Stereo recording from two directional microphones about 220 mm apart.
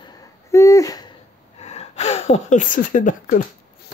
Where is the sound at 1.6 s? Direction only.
30° left (ahead or behind).